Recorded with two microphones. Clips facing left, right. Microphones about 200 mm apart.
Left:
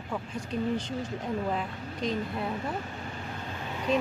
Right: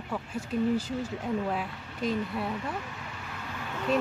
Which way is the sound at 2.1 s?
40° left (ahead or behind).